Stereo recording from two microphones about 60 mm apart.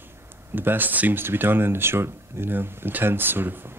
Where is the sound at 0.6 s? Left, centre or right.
Right.